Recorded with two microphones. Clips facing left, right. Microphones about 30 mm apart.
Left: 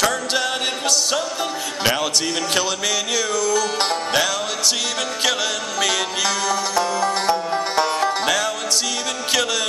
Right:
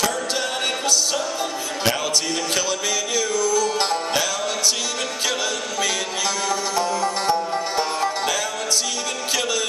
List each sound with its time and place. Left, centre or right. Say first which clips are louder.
3.1 s music: right 1 dB; left
3.8 s music: left 2 dB; left
5.8 s music: left 4 dB; left
7.0 s music: left 2 dB; left
7.7 s music: left 4 dB; left